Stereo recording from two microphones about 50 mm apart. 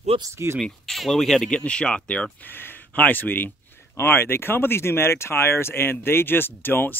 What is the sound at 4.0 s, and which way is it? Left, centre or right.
Speech, left.